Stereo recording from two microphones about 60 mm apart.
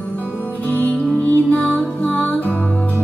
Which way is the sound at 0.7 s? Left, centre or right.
Left.